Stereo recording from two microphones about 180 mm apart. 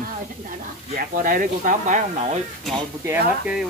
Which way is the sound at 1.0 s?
50° right (ahead or behind).